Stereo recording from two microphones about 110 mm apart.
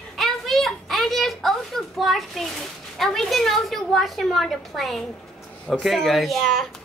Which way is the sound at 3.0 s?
5° left (ahead or behind).